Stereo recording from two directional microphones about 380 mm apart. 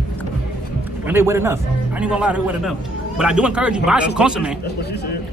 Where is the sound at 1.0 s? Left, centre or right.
Centre.